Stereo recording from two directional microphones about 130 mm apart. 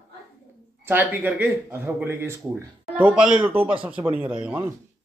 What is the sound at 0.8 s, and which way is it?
Speech, 15° right (ahead or behind).